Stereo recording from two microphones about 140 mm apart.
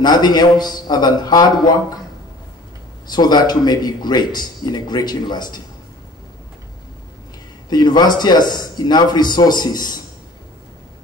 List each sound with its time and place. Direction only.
0.0 s a man's voice: 30° left (ahead or behind)
3.1 s a man's voice: 30° left (ahead or behind)
7.7 s a man's voice: 30° left (ahead or behind)